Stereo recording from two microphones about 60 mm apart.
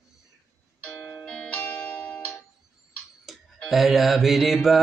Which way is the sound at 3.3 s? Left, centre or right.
Centre.